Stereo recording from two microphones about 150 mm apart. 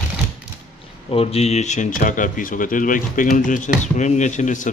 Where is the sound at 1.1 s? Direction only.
40° left (ahead or behind).